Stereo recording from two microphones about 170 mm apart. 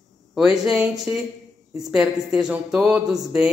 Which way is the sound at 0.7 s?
5° right (ahead or behind).